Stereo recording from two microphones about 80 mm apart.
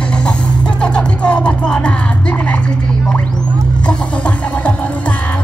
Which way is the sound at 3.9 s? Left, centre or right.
Centre.